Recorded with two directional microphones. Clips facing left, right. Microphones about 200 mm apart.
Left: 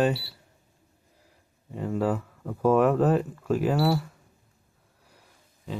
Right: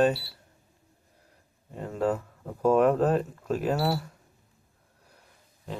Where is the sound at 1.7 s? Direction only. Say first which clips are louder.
Left 1 dB; 5° left (ahead or behind).